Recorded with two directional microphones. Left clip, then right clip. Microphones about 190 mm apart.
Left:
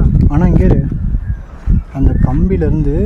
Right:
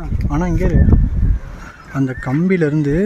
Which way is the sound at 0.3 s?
35° left (ahead or behind).